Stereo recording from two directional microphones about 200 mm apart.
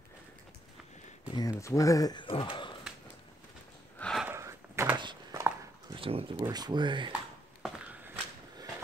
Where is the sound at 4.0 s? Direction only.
Centre (ahead or behind).